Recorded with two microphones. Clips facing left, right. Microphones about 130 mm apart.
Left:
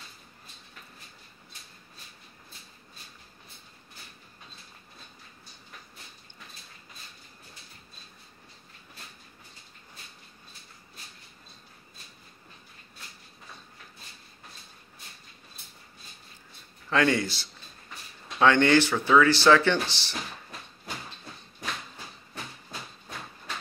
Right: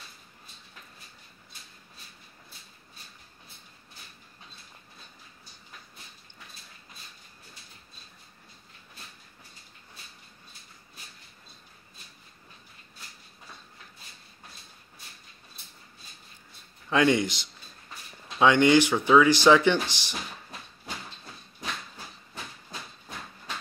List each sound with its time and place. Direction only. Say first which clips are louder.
16.9 s speech: right 2 dB; 20° right (ahead or behind)